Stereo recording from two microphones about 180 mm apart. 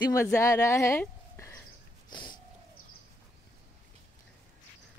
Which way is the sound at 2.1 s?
25° left (ahead or behind).